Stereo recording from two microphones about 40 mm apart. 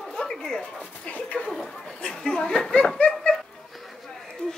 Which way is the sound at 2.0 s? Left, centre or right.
Centre.